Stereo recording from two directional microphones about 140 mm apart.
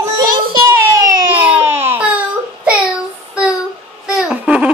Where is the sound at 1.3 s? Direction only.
15° right (ahead or behind).